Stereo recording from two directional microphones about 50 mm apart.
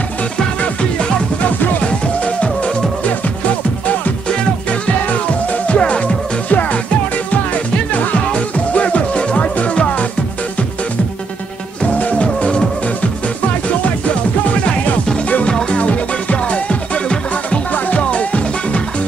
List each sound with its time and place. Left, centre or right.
0.6 s music: centre
2.2 s music: left
11.8 s music: left
14.5 s music: left